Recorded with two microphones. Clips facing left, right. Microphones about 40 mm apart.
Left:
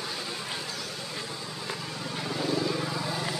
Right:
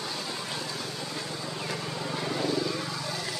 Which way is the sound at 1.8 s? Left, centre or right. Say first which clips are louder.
Right 2 dB; centre.